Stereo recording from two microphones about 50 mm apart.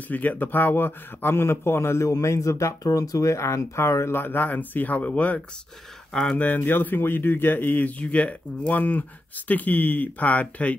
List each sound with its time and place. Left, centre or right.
0.1 s speech: left
4.2 s speech: left
8.0 s speech: left